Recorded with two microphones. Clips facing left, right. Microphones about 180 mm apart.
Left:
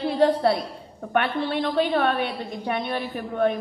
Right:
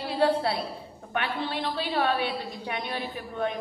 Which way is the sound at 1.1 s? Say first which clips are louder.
Left 7 dB; 50° left (ahead or behind).